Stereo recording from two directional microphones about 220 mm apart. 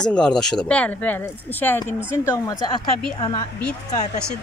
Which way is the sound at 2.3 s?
15° left (ahead or behind).